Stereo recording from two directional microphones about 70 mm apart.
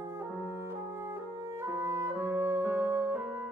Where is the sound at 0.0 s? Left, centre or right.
Right.